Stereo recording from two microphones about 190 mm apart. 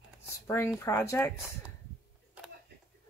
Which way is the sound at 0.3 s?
15° left (ahead or behind).